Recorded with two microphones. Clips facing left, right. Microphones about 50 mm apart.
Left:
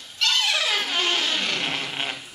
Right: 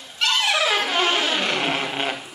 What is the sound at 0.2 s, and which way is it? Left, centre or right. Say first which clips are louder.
Music: right 3 dB; centre.